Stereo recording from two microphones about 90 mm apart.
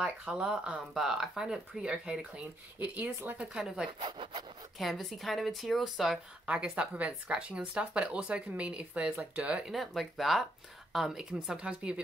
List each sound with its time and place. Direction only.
0.0 s speech: 10° right (ahead or behind)
3.5 s speech: 10° right (ahead or behind)
4.0 s speech: 80° right
4.7 s a woman's voice: centre (ahead or behind)
6.4 s speech: 15° right (ahead or behind)
9.7 s a woman's voice: centre (ahead or behind)